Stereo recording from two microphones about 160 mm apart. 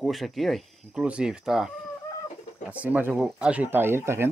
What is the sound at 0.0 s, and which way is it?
Speech, centre (ahead or behind).